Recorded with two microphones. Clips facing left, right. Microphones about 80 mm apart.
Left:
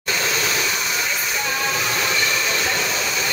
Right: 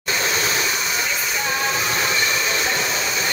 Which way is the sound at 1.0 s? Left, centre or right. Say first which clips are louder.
Even; centre.